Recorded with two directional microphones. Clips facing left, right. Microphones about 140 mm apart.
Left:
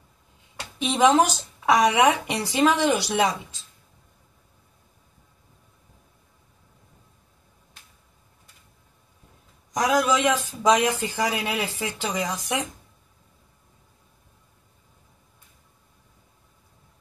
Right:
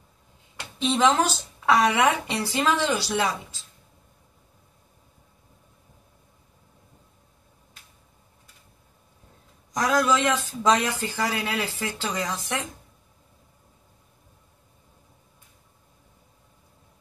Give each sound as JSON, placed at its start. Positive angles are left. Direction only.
{"t": 0.7, "sound": "a woman's voice", "side_deg": 15}
{"t": 9.8, "sound": "a woman's voice", "side_deg": 15}